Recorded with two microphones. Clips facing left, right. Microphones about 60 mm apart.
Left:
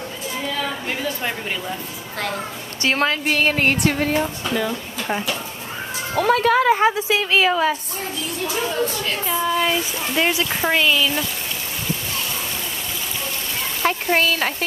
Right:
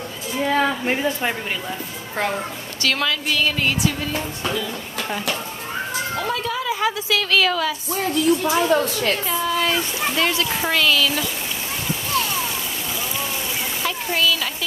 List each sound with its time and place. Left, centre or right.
0.8 s a woman's voice: right
2.8 s a woman's voice: left
6.1 s a woman's voice: left
6.8 s a woman's voice: left
8.1 s a woman's voice: right
9.3 s a woman's voice: centre
13.8 s speech: left